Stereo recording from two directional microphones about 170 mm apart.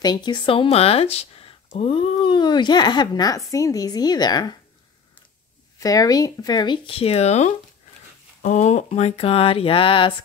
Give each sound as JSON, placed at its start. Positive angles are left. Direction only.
{"t": 0.0, "sound": "speech", "side_deg": 25}
{"t": 5.8, "sound": "speech", "side_deg": 20}